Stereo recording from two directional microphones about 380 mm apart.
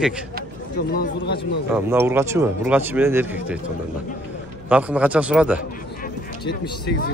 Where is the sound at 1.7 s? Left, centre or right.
Centre.